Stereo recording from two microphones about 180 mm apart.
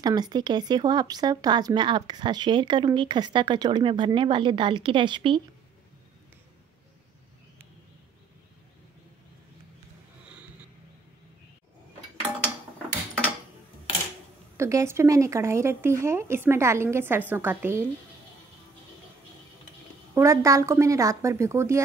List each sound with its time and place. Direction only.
0.0 s speech: 20° right (ahead or behind)
14.6 s speech: 15° right (ahead or behind)
20.2 s speech: 15° right (ahead or behind)